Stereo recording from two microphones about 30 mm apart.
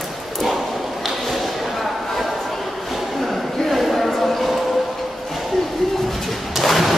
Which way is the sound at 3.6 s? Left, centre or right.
Centre.